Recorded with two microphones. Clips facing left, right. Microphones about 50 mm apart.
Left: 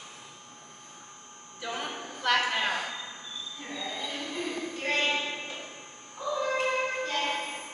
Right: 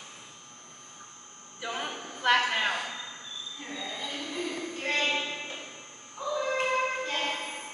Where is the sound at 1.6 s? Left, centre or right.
Centre.